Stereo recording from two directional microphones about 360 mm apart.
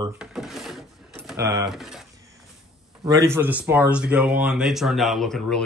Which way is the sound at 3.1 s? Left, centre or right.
Centre.